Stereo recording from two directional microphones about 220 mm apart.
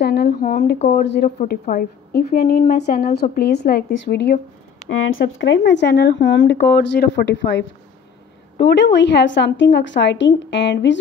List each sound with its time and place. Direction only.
0.0 s a woman's voice: 50° left (ahead or behind)
4.8 s a woman's voice: 60° left (ahead or behind)